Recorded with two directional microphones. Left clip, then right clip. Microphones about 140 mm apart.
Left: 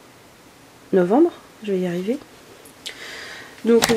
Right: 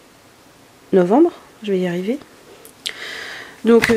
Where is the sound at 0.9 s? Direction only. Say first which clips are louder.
Right 3 dB; 35° right (ahead or behind).